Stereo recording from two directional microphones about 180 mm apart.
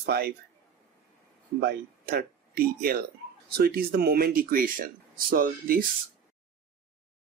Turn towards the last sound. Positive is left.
turn(degrees=-50)  # may be behind; listen again after turning